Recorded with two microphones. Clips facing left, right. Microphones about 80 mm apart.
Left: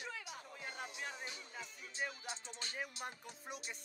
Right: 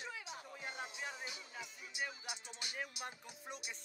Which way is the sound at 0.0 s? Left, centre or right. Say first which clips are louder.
Even; right.